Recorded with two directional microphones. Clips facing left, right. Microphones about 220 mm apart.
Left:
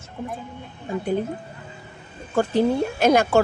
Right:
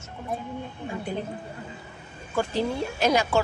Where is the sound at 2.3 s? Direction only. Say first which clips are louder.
Left 7 dB; 55° left (ahead or behind).